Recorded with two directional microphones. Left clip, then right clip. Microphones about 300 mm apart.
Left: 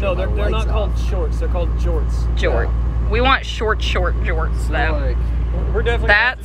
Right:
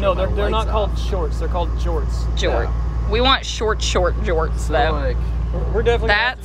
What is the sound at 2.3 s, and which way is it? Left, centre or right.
Speech, centre.